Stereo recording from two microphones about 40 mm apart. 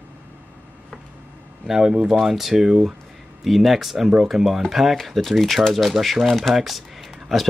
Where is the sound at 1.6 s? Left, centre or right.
Centre.